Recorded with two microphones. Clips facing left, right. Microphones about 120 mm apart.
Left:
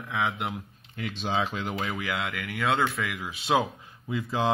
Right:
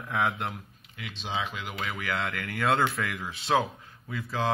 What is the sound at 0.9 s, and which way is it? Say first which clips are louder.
Speech: left 5 dB; 45° left (ahead or behind).